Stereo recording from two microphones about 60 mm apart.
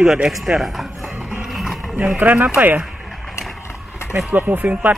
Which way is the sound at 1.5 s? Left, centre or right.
Centre.